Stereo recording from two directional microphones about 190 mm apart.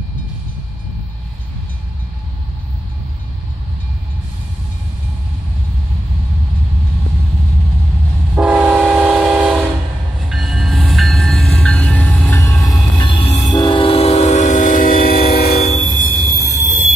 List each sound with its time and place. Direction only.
8.4 s train: 5° right (ahead or behind); by 15.7 s 55° left (ahead or behind)
15.7 s train: 40° left (ahead or behind)